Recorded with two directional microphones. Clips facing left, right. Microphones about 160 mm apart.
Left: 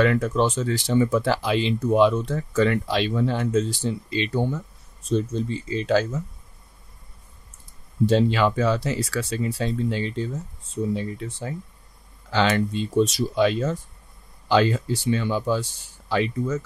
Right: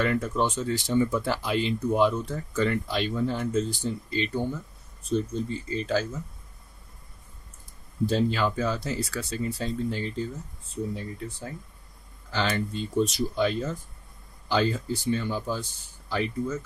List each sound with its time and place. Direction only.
0.0 s speech: 90° left
8.1 s speech: 85° left